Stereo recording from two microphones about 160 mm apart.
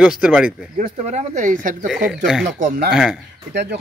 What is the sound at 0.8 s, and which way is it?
Speech, 45° right (ahead or behind).